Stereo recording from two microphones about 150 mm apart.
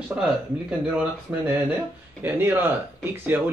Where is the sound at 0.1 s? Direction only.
5° right (ahead or behind).